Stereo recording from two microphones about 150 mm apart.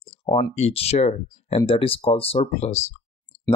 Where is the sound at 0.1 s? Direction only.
35° left (ahead or behind).